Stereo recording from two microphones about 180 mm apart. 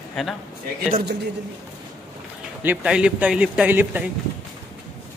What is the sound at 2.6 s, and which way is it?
A man's voice, 5° right (ahead or behind).